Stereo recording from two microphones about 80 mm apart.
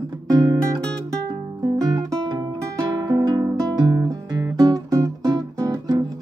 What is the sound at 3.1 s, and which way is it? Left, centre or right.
Music, right.